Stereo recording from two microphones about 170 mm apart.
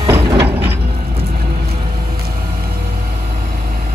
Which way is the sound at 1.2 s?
65° right (ahead or behind).